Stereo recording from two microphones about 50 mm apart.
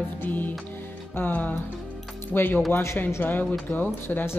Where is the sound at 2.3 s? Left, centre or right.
Left.